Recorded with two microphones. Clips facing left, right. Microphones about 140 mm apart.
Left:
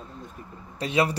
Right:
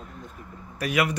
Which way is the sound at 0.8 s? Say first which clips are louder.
Left 1 dB; 25° left (ahead or behind).